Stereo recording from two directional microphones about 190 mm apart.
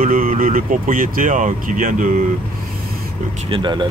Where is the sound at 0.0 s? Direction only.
45° right (ahead or behind).